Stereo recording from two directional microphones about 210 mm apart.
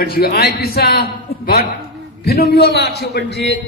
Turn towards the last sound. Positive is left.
turn(degrees=55)  # may be behind; listen again after turning